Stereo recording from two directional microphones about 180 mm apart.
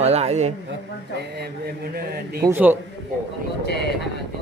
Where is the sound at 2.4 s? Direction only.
10° right (ahead or behind).